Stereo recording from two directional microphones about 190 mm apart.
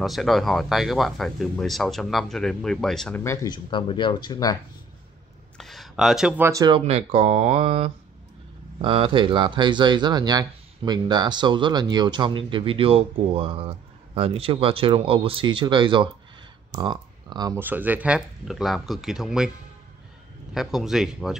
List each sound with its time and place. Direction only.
0.0 s speech: centre (ahead or behind)
3.3 s speech: 25° left (ahead or behind)
5.6 s speech: centre (ahead or behind); by 6.8 s 20° right (ahead or behind)
6.9 s speech: 30° right (ahead or behind); by 19.5 s 5° right (ahead or behind)
20.5 s speech: centre (ahead or behind)